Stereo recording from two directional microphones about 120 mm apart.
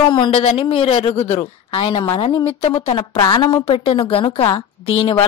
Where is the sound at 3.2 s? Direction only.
35° left (ahead or behind).